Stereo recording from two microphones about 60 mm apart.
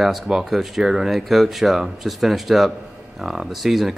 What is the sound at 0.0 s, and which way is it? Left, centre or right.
Speech, centre.